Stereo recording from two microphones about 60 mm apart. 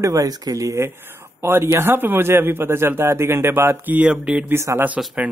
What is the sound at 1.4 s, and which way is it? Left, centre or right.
Speech, right.